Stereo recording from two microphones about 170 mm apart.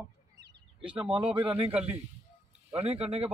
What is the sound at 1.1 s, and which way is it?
Speech, 30° right (ahead or behind).